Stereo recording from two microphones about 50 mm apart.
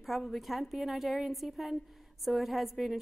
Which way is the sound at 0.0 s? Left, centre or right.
Centre.